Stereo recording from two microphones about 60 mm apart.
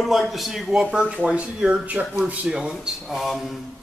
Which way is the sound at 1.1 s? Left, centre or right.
Right.